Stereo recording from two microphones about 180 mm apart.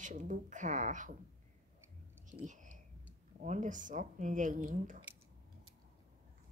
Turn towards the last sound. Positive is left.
turn(degrees=-45)  # may be behind; listen again after turning